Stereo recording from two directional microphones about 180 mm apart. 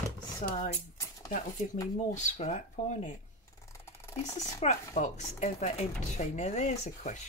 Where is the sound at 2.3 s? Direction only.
40° left (ahead or behind).